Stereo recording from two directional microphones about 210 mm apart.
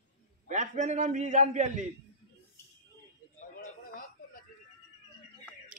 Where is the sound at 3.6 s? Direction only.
40° left (ahead or behind).